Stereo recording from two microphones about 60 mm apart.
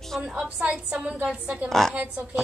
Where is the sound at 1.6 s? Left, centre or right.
Centre.